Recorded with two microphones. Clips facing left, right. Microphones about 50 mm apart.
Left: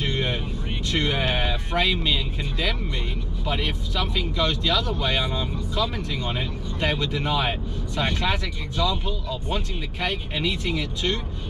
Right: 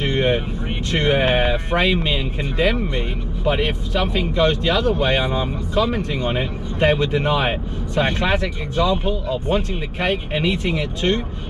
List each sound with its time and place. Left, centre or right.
0.0 s vehicle: right
0.9 s speech: right